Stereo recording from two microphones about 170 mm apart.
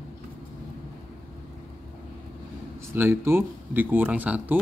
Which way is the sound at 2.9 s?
15° right (ahead or behind).